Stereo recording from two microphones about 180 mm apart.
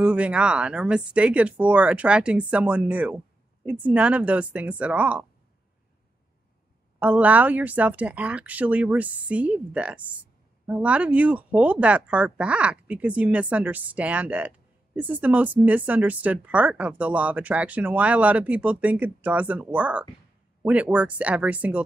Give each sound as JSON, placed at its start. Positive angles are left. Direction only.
{"t": 0.0, "sound": "speech", "side_deg": -5}
{"t": 7.0, "sound": "speech", "side_deg": -10}